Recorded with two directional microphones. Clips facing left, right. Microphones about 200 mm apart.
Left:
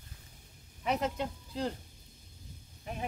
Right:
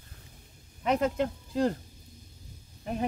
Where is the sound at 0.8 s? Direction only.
50° right (ahead or behind).